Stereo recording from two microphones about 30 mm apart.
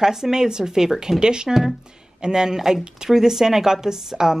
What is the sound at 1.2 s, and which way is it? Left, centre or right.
A woman's voice, right.